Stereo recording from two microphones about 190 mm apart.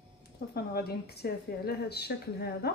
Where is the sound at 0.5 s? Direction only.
55° left (ahead or behind).